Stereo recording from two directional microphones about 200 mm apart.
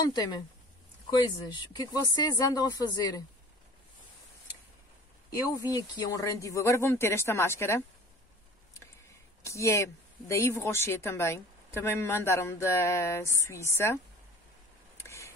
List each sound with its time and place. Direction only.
0.0 s a woman's voice: 20° left (ahead or behind)
5.6 s speech: 20° left (ahead or behind)
9.4 s speech: 15° left (ahead or behind)
15.0 s a sound: 15° left (ahead or behind)